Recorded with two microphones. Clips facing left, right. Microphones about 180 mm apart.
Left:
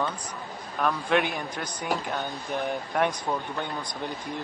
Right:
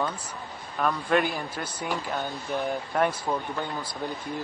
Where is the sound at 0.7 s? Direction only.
Centre (ahead or behind).